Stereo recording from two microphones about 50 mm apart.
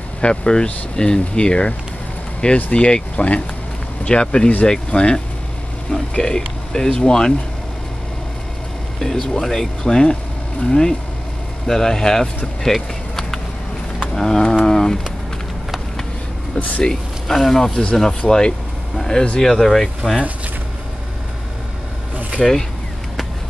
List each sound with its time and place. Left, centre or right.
0.2 s speech: centre
9.0 s speech: centre
12.6 s a sound: centre
14.1 s speech: centre
14.7 s a sound: centre
16.8 s speech: centre
18.9 s a sound: centre
19.4 s speech: centre
22.4 s speech: centre